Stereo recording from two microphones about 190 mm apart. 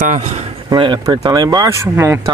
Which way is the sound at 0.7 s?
25° right (ahead or behind).